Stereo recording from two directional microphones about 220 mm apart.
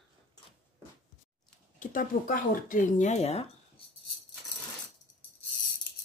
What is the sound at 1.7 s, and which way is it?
Speech, 40° left (ahead or behind).